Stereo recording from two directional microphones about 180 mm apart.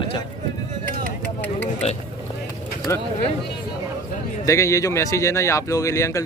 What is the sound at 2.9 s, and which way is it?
Speech, 15° left (ahead or behind).